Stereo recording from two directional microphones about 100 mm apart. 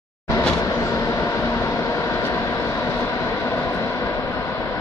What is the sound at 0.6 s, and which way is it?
Vehicle, 30° left (ahead or behind).